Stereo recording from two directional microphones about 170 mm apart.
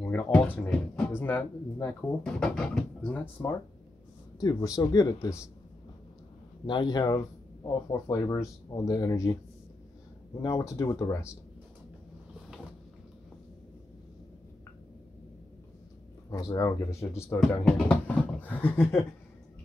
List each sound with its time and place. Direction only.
0.0 s speech: 10° left (ahead or behind)
4.4 s speech: 25° left (ahead or behind)
6.6 s speech: 25° left (ahead or behind)
10.4 s speech: 20° left (ahead or behind)
16.3 s speech: 20° left (ahead or behind)